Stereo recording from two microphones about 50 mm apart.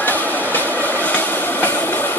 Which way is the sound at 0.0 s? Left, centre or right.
Left.